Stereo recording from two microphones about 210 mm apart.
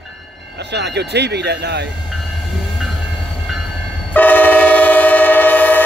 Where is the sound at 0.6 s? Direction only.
55° right (ahead or behind).